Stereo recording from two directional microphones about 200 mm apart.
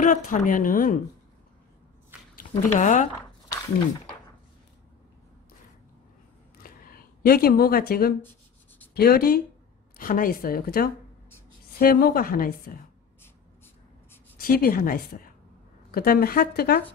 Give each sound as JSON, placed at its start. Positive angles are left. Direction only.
{"t": 0.0, "sound": "speech", "side_deg": 40}
{"t": 2.3, "sound": "speech", "side_deg": 40}
{"t": 6.6, "sound": "a sound", "side_deg": 45}
{"t": 8.9, "sound": "speech", "side_deg": 50}
{"t": 14.4, "sound": "speech", "side_deg": 45}